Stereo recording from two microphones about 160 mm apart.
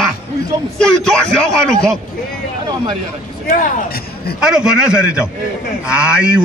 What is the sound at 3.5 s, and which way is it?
Speech, 55° left (ahead or behind).